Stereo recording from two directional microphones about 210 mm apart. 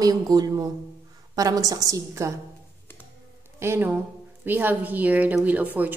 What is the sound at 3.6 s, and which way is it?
A woman's voice, 10° right (ahead or behind).